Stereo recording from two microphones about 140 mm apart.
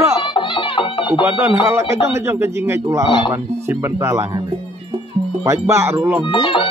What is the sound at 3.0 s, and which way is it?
Speech, 35° left (ahead or behind).